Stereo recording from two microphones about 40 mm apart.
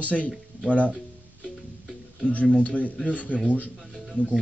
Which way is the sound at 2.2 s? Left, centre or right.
Left.